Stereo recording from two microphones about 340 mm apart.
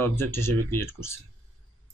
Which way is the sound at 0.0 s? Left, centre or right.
Centre.